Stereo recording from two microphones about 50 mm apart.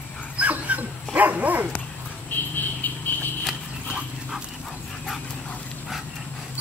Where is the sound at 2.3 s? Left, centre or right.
Left.